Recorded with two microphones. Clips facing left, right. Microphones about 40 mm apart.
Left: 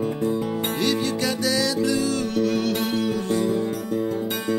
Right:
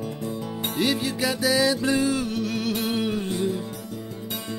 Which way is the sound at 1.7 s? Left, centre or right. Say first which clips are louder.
Left 1 dB; right.